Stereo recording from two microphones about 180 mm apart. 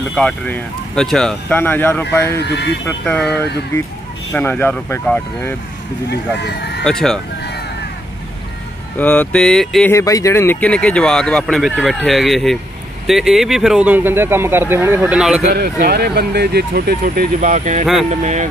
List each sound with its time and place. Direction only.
0.1 s speech: 5° left (ahead or behind)
2.3 s speech: 65° left (ahead or behind)
3.1 s speech: 5° left (ahead or behind)
6.0 s speech: 65° left (ahead or behind)
6.8 s speech: 5° left (ahead or behind)
8.9 s speech: 10° left (ahead or behind)
9.9 s speech: 15° left (ahead or behind); by 15.4 s 5° right (ahead or behind)
15.5 s speech: 60° right (ahead or behind); by 18.5 s 40° right (ahead or behind)